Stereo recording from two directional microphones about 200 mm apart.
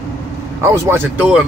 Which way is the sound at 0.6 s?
15° right (ahead or behind).